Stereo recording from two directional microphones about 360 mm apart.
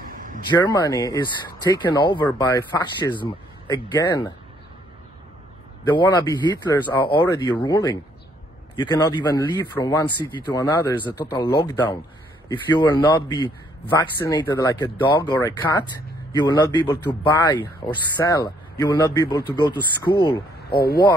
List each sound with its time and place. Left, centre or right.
0.0 s a sound: right
0.5 s a man's voice: centre
5.9 s a man's voice: centre
20.7 s speech: left